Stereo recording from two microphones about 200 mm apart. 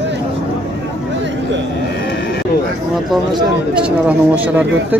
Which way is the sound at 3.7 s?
5° right (ahead or behind).